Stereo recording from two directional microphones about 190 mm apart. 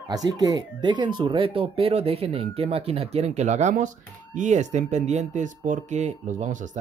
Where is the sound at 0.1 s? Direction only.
20° right (ahead or behind).